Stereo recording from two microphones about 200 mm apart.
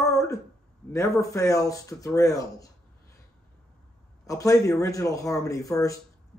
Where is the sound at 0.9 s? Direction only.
15° left (ahead or behind).